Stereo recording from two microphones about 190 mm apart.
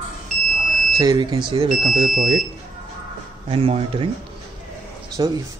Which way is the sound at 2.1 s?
45° right (ahead or behind).